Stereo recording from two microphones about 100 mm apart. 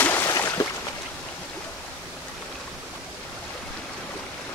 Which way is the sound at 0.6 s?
40° left (ahead or behind).